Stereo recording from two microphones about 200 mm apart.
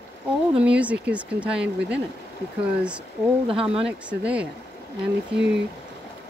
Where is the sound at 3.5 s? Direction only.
25° right (ahead or behind).